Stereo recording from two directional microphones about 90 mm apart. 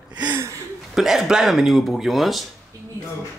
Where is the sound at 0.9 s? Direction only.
5° right (ahead or behind).